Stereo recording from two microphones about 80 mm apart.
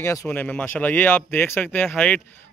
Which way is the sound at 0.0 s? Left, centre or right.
Left.